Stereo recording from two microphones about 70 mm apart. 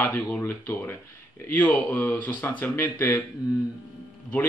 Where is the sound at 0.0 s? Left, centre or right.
Left.